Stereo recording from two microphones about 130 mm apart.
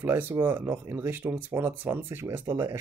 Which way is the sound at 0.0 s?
15° right (ahead or behind).